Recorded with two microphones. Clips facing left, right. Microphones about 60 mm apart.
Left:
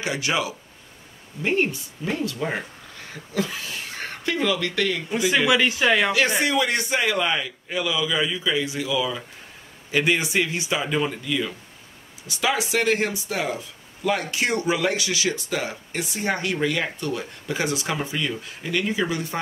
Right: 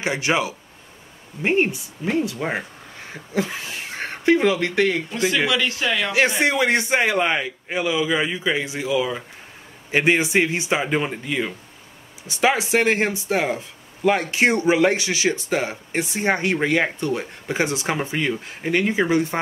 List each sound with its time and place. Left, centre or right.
0.0 s speech: right
5.5 s speech: centre
6.4 s speech: right